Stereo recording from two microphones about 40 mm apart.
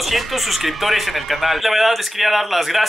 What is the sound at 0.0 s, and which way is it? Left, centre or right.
Speech, centre.